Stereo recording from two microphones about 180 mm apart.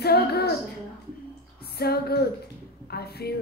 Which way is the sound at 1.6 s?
60° left (ahead or behind).